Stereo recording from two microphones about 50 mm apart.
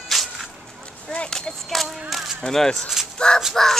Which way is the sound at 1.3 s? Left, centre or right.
Centre.